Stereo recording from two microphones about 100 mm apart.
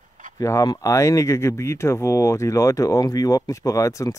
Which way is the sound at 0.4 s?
35° left (ahead or behind).